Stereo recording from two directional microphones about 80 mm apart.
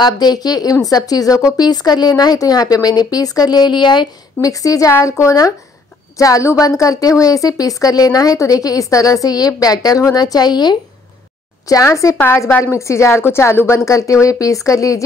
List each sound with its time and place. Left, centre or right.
0.0 s a woman's voice: left
4.4 s a woman's voice: left
11.6 s a woman's voice: left